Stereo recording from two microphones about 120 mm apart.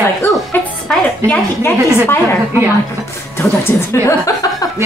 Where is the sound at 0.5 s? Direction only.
15° left (ahead or behind).